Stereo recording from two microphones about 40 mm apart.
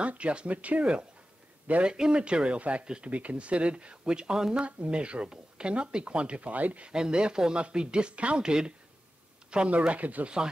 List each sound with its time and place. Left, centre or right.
0.0 s speech: right
1.9 s speech: right
4.6 s speech: right
6.9 s speech: centre
9.7 s speech: right